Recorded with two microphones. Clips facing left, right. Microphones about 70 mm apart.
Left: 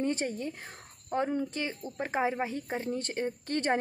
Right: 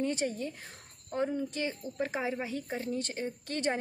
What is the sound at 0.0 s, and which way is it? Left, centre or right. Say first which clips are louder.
A woman's voice: left 1 dB; left.